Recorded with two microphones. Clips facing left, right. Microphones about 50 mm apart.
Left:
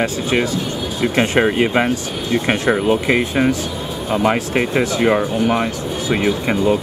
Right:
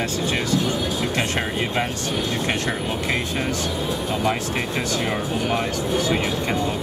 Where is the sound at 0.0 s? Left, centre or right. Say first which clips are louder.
Left 6 dB; left.